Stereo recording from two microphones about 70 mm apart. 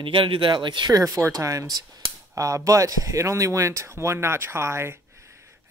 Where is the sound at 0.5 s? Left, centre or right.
Right.